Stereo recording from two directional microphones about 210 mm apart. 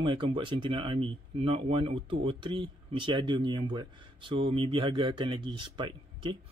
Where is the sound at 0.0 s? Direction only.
25° right (ahead or behind).